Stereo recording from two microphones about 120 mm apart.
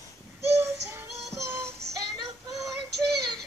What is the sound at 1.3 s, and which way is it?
Music, 25° right (ahead or behind).